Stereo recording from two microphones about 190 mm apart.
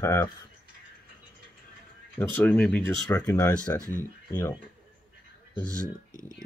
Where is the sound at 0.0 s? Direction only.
15° left (ahead or behind).